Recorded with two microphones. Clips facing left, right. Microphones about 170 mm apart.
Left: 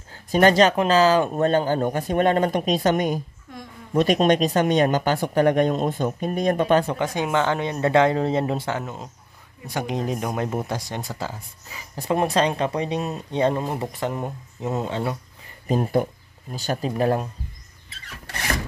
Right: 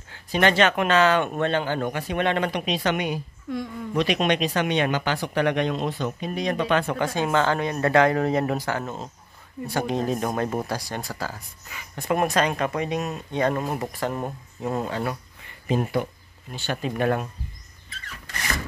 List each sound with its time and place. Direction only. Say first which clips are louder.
0.1 s speech: left 4 dB; 40° left (ahead or behind)
7.0 s speech: even; 15° left (ahead or behind)
10.7 s speech: left 1 dB; 20° left (ahead or behind)
15.4 s a sound: left 1 dB; 40° left (ahead or behind)
16.5 s speech: left 2 dB; 35° left (ahead or behind)